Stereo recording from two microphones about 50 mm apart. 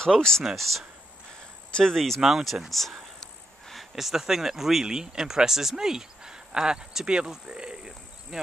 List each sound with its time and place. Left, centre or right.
0.0 s speech: centre
2.0 s speech: centre
2.2 s a sound: centre
3.9 s speech: centre